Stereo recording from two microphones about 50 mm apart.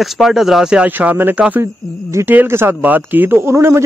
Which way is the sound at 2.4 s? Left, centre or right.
Right.